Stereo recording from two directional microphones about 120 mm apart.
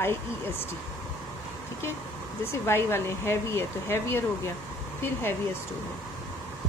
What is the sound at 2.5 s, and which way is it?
Speech, 20° left (ahead or behind).